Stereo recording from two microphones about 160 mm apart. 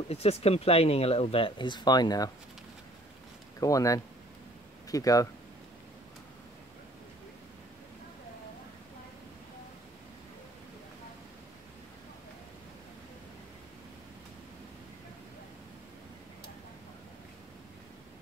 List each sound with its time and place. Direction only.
0.1 s speech: 40° left (ahead or behind); by 2.3 s 25° left (ahead or behind)
3.5 s speech: 20° left (ahead or behind)